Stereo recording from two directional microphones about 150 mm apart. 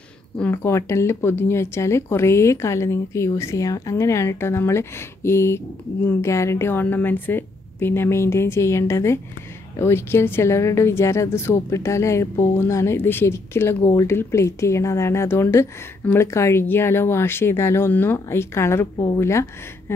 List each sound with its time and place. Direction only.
0.4 s speech: 15° left (ahead or behind)